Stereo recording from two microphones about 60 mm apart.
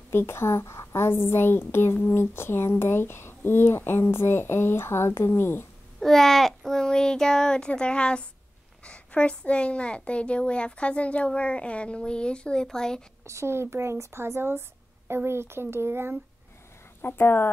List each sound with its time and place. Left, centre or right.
0.1 s speech: left
5.9 s child singing: centre
8.8 s a child's voice: centre
12.6 s child singing: centre
13.3 s speech: right
17.0 s speech: left